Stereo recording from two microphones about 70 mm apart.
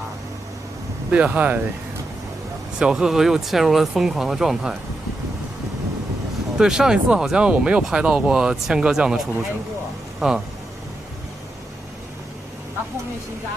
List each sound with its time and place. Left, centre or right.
1.1 s speech: right
2.8 s speech: centre
6.6 s speech: centre